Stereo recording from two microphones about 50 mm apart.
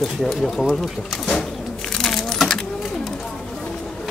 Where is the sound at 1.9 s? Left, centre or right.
Centre.